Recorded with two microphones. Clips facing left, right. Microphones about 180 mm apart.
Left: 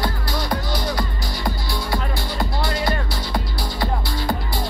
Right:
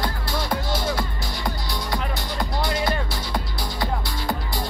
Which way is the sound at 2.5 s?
20° right (ahead or behind).